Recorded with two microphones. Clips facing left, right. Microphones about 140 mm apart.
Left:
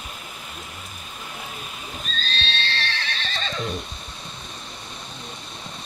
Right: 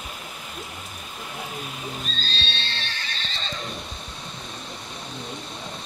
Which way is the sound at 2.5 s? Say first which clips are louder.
Left 5 dB; 80° left.